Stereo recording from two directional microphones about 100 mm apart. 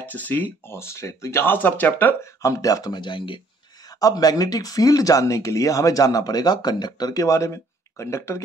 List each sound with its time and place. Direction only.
0.0 s speech: 15° left (ahead or behind)
2.4 s speech: 35° left (ahead or behind); by 3.3 s 55° left (ahead or behind)
4.0 s speech: 40° left (ahead or behind)